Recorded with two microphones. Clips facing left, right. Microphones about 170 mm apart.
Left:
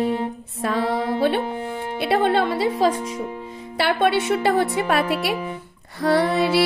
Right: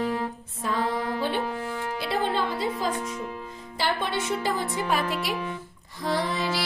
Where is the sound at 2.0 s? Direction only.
70° left (ahead or behind).